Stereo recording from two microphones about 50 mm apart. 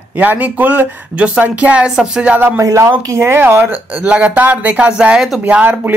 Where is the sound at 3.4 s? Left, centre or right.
Right.